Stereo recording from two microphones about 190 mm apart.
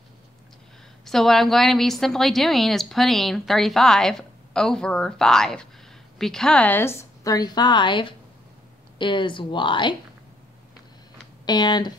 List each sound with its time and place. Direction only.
1.0 s a woman's voice: centre (ahead or behind); by 9.9 s 25° left (ahead or behind)
11.4 s a woman's voice: 20° left (ahead or behind)